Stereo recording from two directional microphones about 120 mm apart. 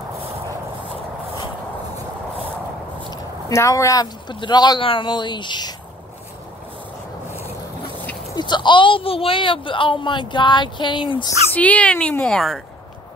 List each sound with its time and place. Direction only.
3.1 s speech: 30° left (ahead or behind)
8.4 s speech: 40° left (ahead or behind)
11.5 s a woman's voice: 10° left (ahead or behind)